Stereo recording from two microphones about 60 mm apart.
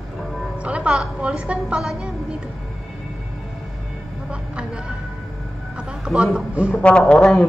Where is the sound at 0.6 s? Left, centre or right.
Right.